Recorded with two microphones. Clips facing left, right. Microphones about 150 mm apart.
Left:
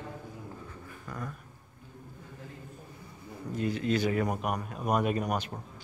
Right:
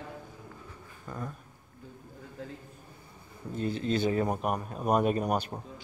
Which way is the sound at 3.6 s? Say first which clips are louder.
Even; 30° right (ahead or behind).